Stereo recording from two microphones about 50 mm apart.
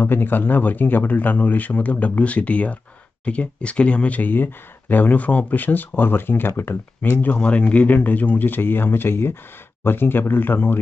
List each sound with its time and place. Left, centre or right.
0.0 s speech: left
7.0 s speech: left
7.3 s speech: left